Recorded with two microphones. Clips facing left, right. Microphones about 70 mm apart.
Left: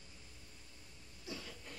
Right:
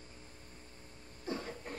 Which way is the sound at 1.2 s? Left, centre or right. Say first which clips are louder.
Right 8 dB; right.